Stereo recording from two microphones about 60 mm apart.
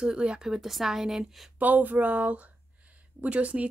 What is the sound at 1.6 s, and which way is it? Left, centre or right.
A woman's voice, right.